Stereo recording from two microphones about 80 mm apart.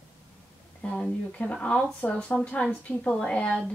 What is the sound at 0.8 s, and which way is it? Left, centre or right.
A woman's voice, centre.